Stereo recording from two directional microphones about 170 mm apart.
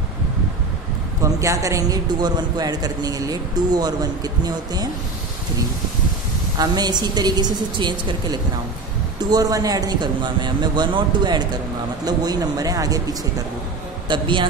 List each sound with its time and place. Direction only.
1.2 s a man's voice: 20° right (ahead or behind)
6.6 s a man's voice: 25° right (ahead or behind)